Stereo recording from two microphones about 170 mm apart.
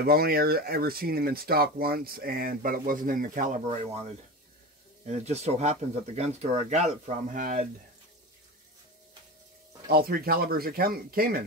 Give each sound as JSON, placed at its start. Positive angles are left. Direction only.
{"t": 0.0, "sound": "speech", "side_deg": -65}
{"t": 5.0, "sound": "speech", "side_deg": -40}
{"t": 9.8, "sound": "speech", "side_deg": -60}